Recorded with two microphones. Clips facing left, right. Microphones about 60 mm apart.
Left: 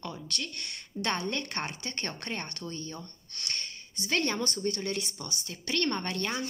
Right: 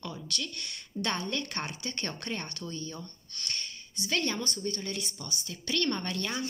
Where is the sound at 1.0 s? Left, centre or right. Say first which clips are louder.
Left 1 dB; left.